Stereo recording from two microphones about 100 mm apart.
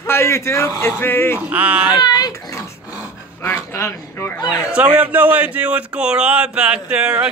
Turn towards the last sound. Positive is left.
turn(degrees=-10)  # may be behind; listen again after turning